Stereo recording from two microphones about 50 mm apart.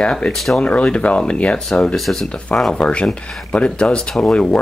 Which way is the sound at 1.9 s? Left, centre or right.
Centre.